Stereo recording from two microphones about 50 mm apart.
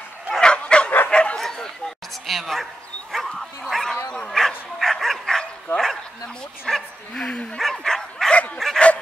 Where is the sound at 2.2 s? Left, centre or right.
Centre.